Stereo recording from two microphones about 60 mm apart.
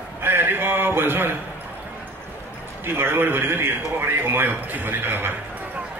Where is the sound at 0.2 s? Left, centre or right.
Right.